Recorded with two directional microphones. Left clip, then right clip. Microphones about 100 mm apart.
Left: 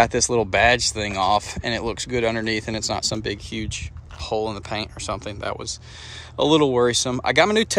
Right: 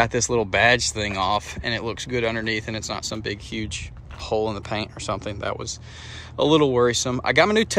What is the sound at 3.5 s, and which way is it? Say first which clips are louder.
Speech: even; 35° left (ahead or behind).